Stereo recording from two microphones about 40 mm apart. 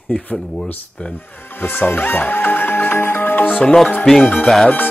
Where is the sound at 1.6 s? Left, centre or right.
Left.